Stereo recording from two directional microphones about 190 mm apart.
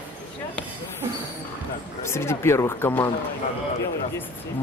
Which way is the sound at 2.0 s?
15° left (ahead or behind).